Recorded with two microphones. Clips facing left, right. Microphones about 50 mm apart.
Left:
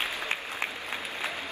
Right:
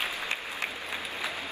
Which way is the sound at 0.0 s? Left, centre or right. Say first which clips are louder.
Left 1 dB; left.